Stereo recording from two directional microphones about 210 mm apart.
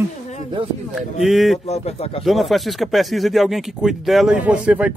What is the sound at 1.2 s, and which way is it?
Speech, centre (ahead or behind).